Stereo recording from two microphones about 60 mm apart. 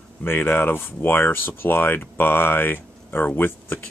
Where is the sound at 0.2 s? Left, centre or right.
Left.